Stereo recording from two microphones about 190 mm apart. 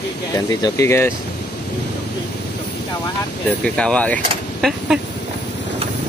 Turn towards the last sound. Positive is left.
turn(degrees=0)  # may be behind; listen again after turning